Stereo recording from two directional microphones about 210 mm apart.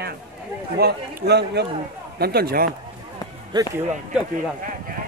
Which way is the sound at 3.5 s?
20° right (ahead or behind).